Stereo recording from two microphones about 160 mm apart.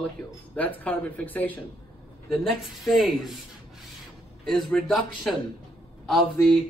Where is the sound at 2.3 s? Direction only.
Centre (ahead or behind).